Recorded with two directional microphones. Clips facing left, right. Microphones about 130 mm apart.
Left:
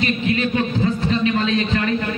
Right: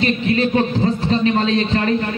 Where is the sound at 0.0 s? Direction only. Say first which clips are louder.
Right 3 dB; 35° right (ahead or behind).